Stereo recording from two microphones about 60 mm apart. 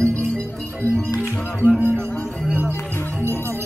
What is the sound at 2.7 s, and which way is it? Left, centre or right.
Music, left.